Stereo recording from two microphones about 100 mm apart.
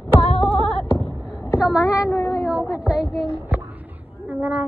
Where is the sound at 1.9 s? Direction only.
30° left (ahead or behind).